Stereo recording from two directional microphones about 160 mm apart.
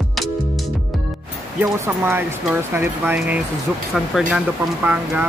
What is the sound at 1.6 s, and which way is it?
Speech, 15° right (ahead or behind).